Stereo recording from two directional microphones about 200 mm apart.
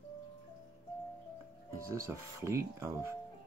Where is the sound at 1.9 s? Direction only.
15° right (ahead or behind).